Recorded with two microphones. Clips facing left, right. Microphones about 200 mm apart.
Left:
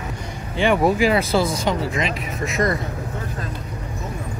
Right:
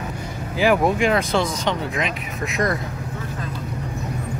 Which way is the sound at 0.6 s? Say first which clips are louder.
Left 1 dB; centre (ahead or behind).